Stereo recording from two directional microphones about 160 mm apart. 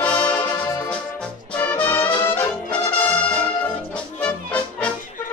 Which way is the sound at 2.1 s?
30° left (ahead or behind).